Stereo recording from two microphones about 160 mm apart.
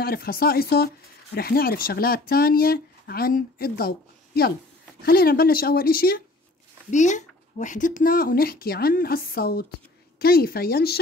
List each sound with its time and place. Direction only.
0.0 s speech: 70° left (ahead or behind)
6.9 s speech: 50° left (ahead or behind); by 11.0 s 75° left (ahead or behind)